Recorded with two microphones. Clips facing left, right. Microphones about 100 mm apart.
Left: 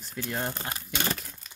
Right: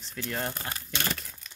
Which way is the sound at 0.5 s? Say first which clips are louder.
Left 1 dB; 20° left (ahead or behind).